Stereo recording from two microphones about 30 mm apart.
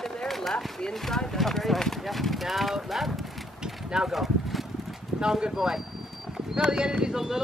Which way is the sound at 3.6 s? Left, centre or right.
Right.